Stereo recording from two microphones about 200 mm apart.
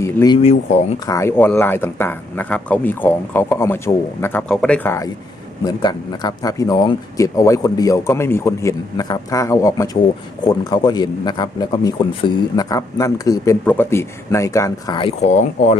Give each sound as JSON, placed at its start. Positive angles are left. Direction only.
{"t": 0.0, "sound": "speech", "side_deg": 15}
{"t": 0.4, "sound": "a man's voice", "side_deg": 30}
{"t": 1.0, "sound": "a man's voice", "side_deg": 15}